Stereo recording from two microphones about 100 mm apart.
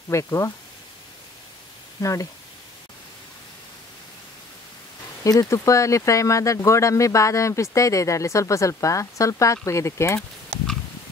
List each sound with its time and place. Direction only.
0.1 s speech: 30° left (ahead or behind)
2.0 s speech: 35° left (ahead or behind)
5.2 s speech: 35° left (ahead or behind)